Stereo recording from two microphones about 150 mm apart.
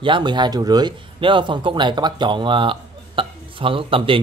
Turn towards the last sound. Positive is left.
turn(degrees=-35)  # may be behind; listen again after turning